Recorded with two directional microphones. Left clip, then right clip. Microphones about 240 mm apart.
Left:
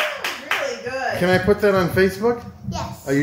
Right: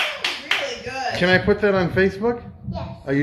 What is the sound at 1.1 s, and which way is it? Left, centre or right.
A man's voice, centre.